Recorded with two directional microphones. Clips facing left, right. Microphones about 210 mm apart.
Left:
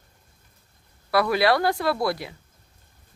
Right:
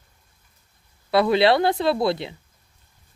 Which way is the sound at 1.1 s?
25° right (ahead or behind).